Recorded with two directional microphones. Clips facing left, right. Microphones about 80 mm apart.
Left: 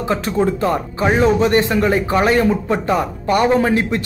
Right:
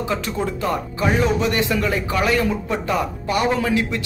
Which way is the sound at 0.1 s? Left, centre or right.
Left.